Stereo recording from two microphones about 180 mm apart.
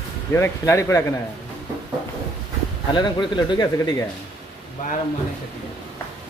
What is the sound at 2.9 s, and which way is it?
Speech, 25° left (ahead or behind).